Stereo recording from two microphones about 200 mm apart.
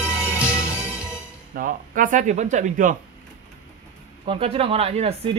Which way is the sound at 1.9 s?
40° right (ahead or behind).